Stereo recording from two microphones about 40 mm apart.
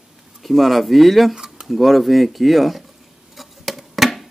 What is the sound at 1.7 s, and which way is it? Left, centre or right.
Speech, centre.